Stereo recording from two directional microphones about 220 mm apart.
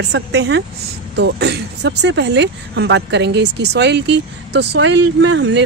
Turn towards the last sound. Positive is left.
turn(degrees=-55)  # may be behind; listen again after turning